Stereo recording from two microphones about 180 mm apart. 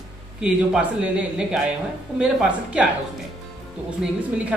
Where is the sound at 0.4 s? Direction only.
5° right (ahead or behind).